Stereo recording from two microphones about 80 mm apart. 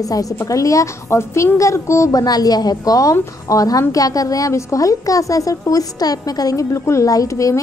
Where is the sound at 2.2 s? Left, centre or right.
Left.